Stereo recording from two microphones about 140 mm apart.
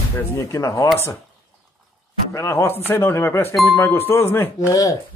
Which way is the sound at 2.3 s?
20° left (ahead or behind).